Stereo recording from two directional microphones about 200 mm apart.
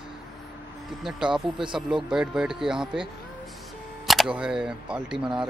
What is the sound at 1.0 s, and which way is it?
Speech, centre (ahead or behind).